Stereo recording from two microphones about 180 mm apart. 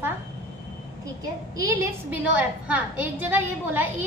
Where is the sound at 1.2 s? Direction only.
20° right (ahead or behind).